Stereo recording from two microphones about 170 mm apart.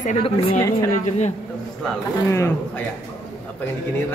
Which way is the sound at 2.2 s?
15° left (ahead or behind).